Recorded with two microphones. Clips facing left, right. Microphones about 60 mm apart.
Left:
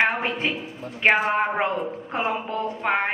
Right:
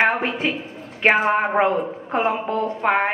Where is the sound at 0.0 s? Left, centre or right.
Centre.